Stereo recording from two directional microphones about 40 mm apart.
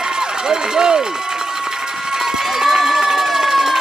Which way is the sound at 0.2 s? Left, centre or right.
Centre.